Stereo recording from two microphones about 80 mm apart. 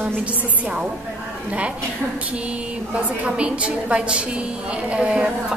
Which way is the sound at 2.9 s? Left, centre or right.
Centre.